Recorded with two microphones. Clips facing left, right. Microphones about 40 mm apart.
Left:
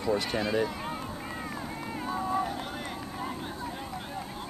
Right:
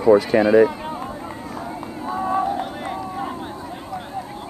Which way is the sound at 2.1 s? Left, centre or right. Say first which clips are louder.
Right 8 dB; right.